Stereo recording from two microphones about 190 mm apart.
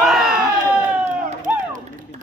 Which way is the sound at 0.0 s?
5° right (ahead or behind).